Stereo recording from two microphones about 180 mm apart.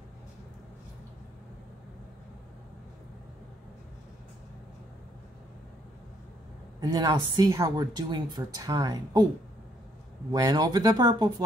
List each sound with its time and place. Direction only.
6.8 s a woman's voice: 25° right (ahead or behind)
10.3 s a woman's voice: 20° right (ahead or behind)